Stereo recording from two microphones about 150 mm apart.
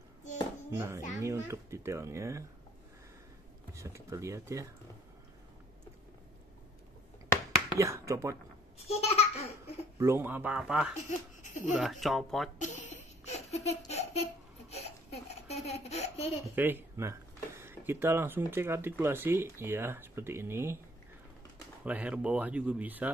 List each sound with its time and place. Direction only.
0.7 s speech: 15° right (ahead or behind)
3.7 s speech: 20° right (ahead or behind)
7.8 s speech: 20° right (ahead or behind)
8.7 s babbling: 45° left (ahead or behind)
9.9 s speech: 15° right (ahead or behind)
11.1 s speech: 55° left (ahead or behind)
11.8 s speech: centre (ahead or behind)
12.5 s baby laughter: 55° left (ahead or behind)
16.5 s speech: 15° right (ahead or behind)
21.8 s speech: 10° right (ahead or behind)